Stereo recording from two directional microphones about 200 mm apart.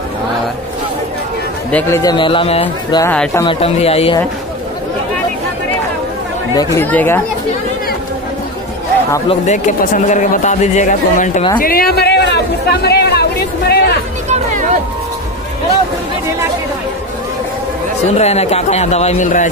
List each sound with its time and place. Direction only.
1.7 s speech: 10° left (ahead or behind); by 3.0 s 30° left (ahead or behind)
3.0 s speech: 10° left (ahead or behind)
3.4 s speech: 30° left (ahead or behind)
6.5 s speech: 15° left (ahead or behind)
9.3 s speech: 35° left (ahead or behind); by 13.9 s 55° left (ahead or behind)
14.3 s a sound: 40° right (ahead or behind)
18.1 s speech: 35° left (ahead or behind)